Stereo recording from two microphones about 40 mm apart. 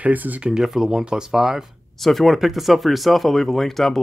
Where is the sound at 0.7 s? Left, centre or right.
Centre.